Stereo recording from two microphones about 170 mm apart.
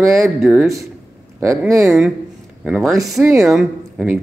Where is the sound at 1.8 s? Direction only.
Centre (ahead or behind).